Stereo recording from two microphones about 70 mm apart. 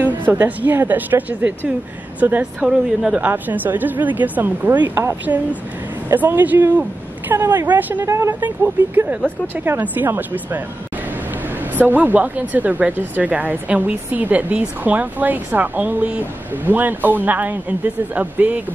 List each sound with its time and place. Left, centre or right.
0.0 s speech: right
2.7 s a woman's voice: centre
3.2 s speech: right
8.0 s speech: right
8.4 s speech: right
11.7 s speech: right